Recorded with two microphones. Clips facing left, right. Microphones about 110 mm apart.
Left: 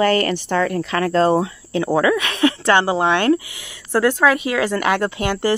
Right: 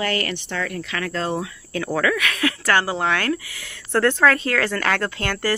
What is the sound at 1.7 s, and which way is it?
Speech, 20° left (ahead or behind).